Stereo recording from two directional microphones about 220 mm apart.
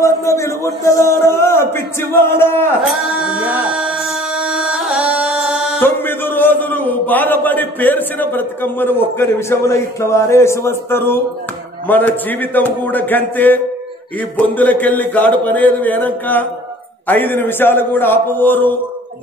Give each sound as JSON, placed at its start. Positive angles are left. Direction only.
{"t": 0.0, "sound": "a man's voice", "side_deg": 15}
{"t": 2.8, "sound": "music", "side_deg": -5}
{"t": 5.8, "sound": "a man's voice", "side_deg": 10}